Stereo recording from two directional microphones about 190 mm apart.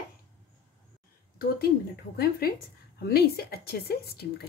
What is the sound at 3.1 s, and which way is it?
A woman's voice, 55° left (ahead or behind).